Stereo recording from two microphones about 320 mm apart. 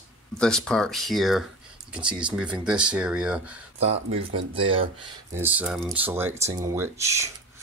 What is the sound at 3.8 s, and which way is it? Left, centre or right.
Speech, centre.